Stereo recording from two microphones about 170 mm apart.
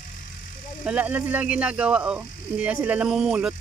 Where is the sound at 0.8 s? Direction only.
5° right (ahead or behind).